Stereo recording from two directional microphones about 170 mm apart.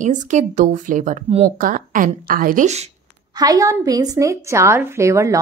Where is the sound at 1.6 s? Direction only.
55° right (ahead or behind).